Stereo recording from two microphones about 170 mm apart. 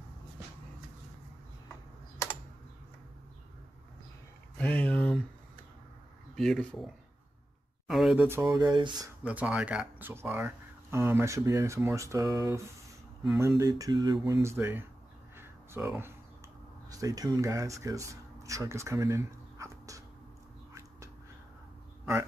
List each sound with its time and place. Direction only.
4.6 s a sound: 10° left (ahead or behind)
6.3 s speech: centre (ahead or behind)
7.9 s speech: centre (ahead or behind)
8.3 s speech: 15° right (ahead or behind)
9.2 s speech: 10° right (ahead or behind)
15.3 s a sound: 15° right (ahead or behind)
16.9 s speech: 20° right (ahead or behind)